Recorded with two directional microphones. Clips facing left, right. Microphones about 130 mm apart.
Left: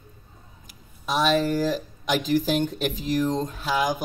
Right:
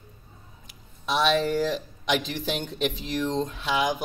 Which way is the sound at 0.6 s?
45° left (ahead or behind).